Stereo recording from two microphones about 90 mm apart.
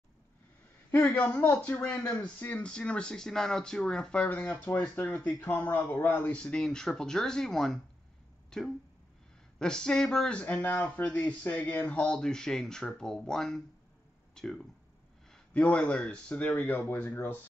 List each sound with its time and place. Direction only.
1.1 s speech: 15° left (ahead or behind)